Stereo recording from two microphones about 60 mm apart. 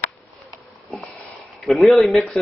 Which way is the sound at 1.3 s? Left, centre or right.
Centre.